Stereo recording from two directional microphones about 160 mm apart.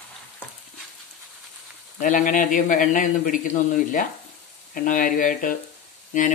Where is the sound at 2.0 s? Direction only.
55° left (ahead or behind).